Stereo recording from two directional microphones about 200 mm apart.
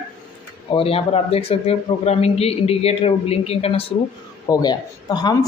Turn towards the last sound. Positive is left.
turn(degrees=20)  # may be behind; listen again after turning